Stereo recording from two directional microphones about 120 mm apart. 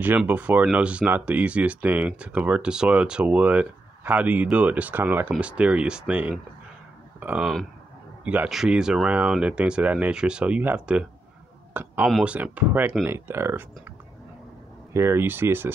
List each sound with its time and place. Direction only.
0.3 s speech: 15° right (ahead or behind)
7.2 s a sound: 15° right (ahead or behind)
8.2 s speech: 10° right (ahead or behind)
15.0 s speech: 20° right (ahead or behind)